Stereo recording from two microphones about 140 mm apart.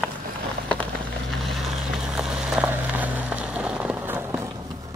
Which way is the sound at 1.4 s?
Centre (ahead or behind).